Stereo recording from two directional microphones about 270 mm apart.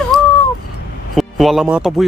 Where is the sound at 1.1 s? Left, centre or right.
Centre.